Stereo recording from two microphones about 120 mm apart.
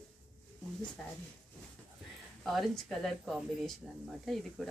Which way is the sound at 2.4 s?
Centre (ahead or behind).